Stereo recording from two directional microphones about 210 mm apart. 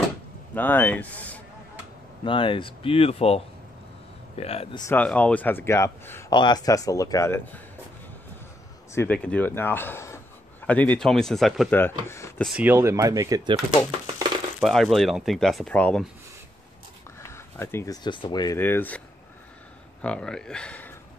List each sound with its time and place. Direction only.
0.6 s a man's voice: 10° left (ahead or behind)
2.2 s speech: 25° left (ahead or behind)
4.8 s a man's voice: 5° left (ahead or behind)
8.9 s a man's voice: 10° left (ahead or behind)
11.8 s a man's voice: 10° left (ahead or behind)
12.4 s speech: 5° right (ahead or behind)
14.6 s speech: centre (ahead or behind)
17.2 s speech: 10° left (ahead or behind)